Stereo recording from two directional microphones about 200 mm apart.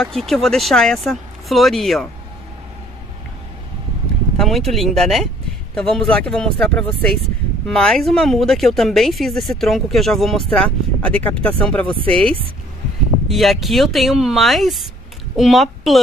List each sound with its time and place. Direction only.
0.0 s speech: centre (ahead or behind)
4.4 s speech: centre (ahead or behind)
12.0 s speech: 25° right (ahead or behind)
13.3 s a woman's voice: centre (ahead or behind)